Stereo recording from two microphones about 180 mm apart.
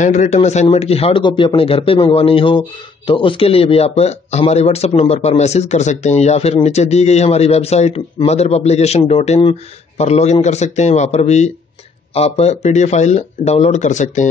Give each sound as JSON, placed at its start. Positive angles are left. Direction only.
{"t": 0.0, "sound": "speech", "side_deg": 40}